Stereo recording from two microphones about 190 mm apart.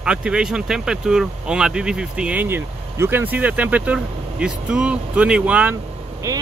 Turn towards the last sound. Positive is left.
turn(degrees=-15)  # may be behind; listen again after turning